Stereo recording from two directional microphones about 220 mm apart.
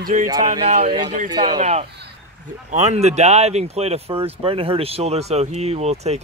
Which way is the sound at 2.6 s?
30° right (ahead or behind).